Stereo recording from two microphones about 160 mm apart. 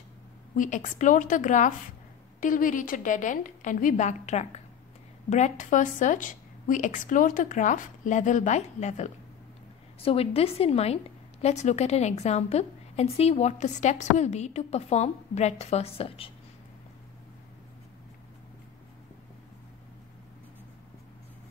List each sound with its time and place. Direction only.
0.6 s a woman's voice: 50° left (ahead or behind)